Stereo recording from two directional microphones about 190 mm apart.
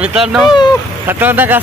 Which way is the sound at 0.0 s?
Centre (ahead or behind).